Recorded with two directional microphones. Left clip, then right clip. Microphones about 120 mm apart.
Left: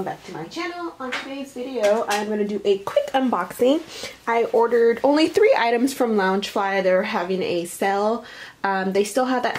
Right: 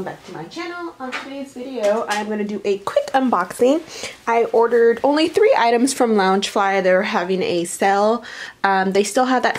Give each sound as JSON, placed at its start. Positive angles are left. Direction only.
{"t": 1.8, "sound": "speech", "side_deg": -10}